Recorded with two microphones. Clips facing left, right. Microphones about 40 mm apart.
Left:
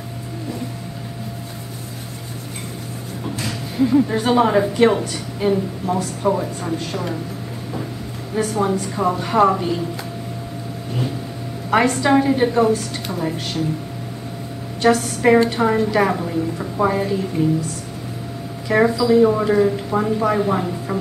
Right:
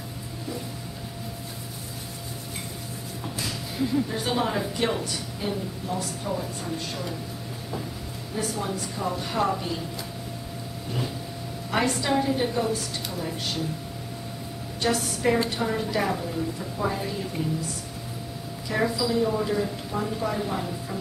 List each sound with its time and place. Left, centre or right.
3.7 s a woman's voice: left
4.1 s a woman's voice: left
8.4 s speech: left
11.7 s speech: left
14.8 s speech: left
18.7 s speech: left